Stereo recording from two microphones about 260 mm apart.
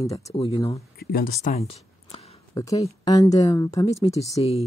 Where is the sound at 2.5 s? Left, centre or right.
Centre.